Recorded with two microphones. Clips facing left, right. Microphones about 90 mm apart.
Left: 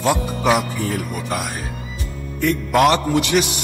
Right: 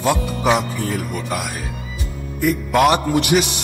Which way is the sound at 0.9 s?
Centre (ahead or behind).